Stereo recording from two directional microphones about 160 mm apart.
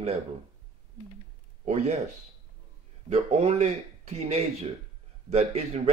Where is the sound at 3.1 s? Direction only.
40° right (ahead or behind).